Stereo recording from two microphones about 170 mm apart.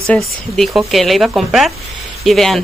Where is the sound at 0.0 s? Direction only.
Centre (ahead or behind).